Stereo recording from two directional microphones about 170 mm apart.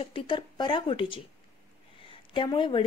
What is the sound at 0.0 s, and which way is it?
Speech, 30° left (ahead or behind).